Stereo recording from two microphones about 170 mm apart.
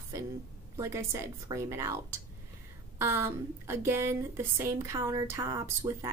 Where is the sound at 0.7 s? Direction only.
15° right (ahead or behind).